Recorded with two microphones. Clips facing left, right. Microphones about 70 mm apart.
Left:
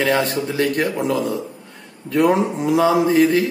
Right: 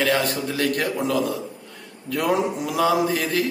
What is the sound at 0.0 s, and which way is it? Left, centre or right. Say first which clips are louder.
Speech: left 3 dB; left.